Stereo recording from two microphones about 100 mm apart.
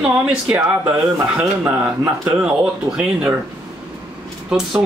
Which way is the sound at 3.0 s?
15° right (ahead or behind).